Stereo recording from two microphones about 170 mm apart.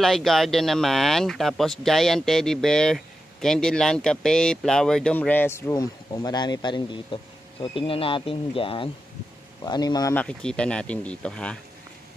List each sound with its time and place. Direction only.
0.0 s a man's voice: centre (ahead or behind); by 10.1 s 25° left (ahead or behind)
10.1 s speech: 5° left (ahead or behind)